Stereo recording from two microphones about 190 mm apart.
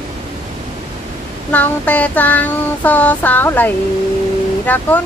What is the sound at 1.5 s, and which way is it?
Child singing, 10° left (ahead or behind).